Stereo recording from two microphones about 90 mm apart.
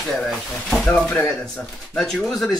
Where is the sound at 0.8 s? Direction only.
15° left (ahead or behind).